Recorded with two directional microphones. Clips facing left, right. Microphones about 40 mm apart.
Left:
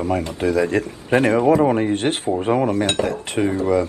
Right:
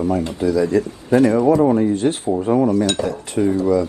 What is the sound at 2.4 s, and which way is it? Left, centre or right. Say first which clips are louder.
Cutlery: right 3 dB; left.